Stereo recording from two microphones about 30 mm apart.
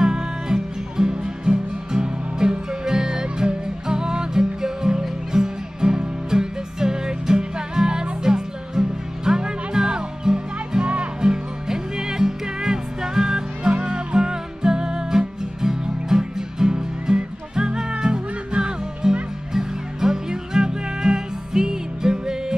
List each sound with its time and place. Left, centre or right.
0.0 s music: right
10.8 s music: right
11.1 s music: right